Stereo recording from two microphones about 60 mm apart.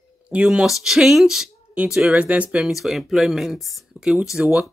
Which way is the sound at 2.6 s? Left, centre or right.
Centre.